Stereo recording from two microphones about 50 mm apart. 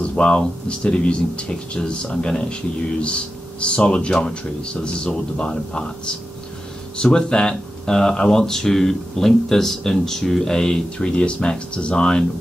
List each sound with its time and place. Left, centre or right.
0.2 s speech: centre